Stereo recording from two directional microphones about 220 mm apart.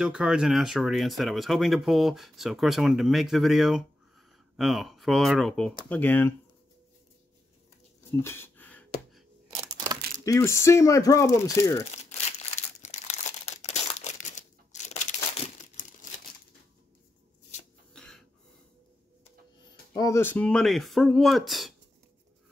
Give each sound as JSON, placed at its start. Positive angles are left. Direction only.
{"t": 0.0, "sound": "speech", "side_deg": -5}
{"t": 8.1, "sound": "a sound", "side_deg": 10}
{"t": 9.6, "sound": "a sound", "side_deg": -20}
{"t": 10.2, "sound": "speech", "side_deg": 15}
{"t": 12.0, "sound": "crumpling", "side_deg": 30}
{"t": 17.9, "sound": "throat clearing", "side_deg": 5}
{"t": 19.9, "sound": "speech", "side_deg": 15}